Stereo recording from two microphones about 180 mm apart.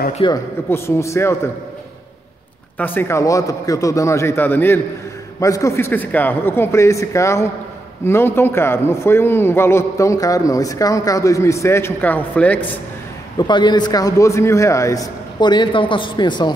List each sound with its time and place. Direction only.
0.3 s a man's voice: 15° left (ahead or behind)
2.8 s a man's voice: 10° left (ahead or behind)
13.4 s a man's voice: 25° left (ahead or behind)